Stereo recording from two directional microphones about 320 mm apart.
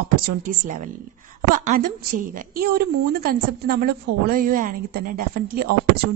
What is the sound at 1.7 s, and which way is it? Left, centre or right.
A woman's voice, right.